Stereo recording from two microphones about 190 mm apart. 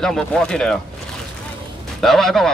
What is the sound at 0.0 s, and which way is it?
Speech, centre (ahead or behind).